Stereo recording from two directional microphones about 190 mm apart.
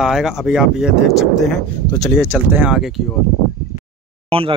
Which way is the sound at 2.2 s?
10° right (ahead or behind).